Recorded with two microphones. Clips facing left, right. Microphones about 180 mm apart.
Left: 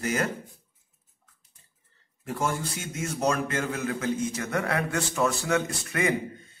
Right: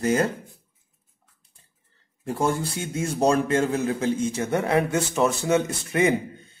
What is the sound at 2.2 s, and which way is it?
A man's voice, 30° right (ahead or behind).